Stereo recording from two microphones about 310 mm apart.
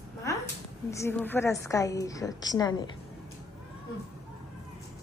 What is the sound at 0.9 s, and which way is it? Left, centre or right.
A woman's voice, centre.